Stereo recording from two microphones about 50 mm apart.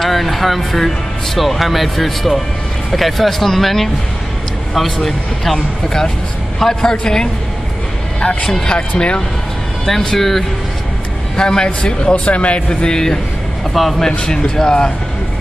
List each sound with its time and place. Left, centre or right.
0.0 s speech: centre
9.8 s speech: centre
11.3 s speech: centre
12.6 s speech: centre
14.0 s speech: centre